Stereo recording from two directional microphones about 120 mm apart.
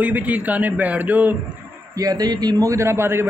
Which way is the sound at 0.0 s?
10° right (ahead or behind).